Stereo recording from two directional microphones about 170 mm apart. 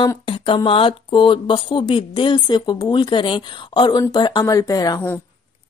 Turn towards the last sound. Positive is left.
turn(degrees=20)  # may be behind; listen again after turning